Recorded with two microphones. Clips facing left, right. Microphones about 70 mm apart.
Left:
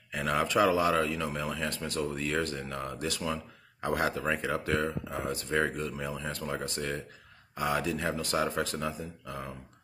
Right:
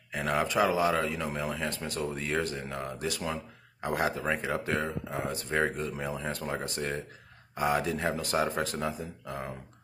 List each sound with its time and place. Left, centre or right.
0.1 s speech: right